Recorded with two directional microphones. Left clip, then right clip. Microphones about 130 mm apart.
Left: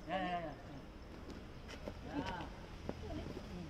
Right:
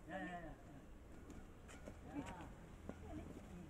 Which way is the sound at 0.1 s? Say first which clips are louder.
Left 10 dB; 25° left (ahead or behind).